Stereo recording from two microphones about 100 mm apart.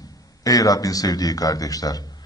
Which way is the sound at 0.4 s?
35° left (ahead or behind).